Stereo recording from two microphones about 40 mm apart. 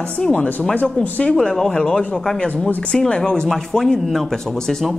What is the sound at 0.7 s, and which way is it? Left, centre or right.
Speech, left.